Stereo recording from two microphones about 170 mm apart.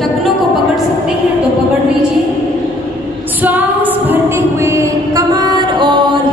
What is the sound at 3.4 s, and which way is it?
Music, 10° right (ahead or behind).